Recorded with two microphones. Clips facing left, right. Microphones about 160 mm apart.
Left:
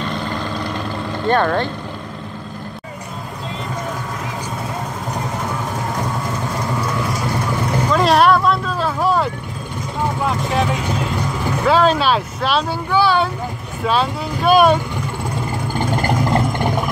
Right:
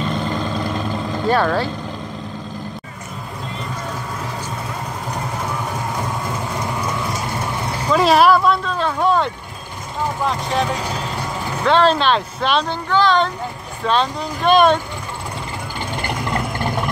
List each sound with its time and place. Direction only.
0.0 s vehicle: centre (ahead or behind)
1.2 s speech: 5° right (ahead or behind)
7.9 s speech: centre (ahead or behind)
15.7 s vehicle: 40° left (ahead or behind)
16.5 s a sound: 15° left (ahead or behind)